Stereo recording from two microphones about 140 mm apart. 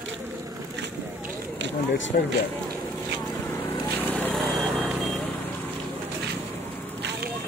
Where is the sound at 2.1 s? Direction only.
90° left.